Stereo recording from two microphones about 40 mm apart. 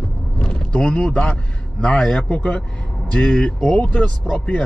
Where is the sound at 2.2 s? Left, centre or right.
Left.